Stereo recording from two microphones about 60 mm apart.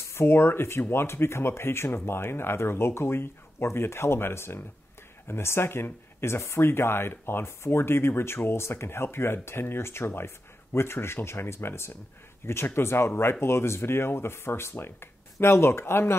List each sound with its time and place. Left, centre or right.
0.1 s speech: left